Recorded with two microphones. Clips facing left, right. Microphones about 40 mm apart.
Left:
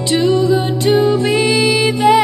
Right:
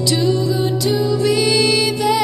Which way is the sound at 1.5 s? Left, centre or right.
Centre.